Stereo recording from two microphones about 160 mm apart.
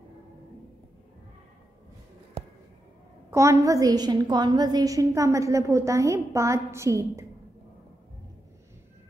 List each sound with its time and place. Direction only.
3.3 s a woman's voice: 20° right (ahead or behind)